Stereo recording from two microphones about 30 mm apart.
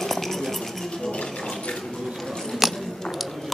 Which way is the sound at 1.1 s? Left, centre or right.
Left.